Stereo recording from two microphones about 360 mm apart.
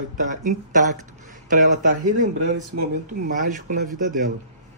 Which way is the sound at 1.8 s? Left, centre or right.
Right.